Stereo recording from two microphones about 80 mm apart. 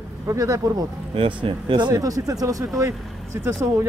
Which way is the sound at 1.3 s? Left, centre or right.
Right.